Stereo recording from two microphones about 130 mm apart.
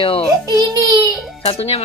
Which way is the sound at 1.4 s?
50° left (ahead or behind).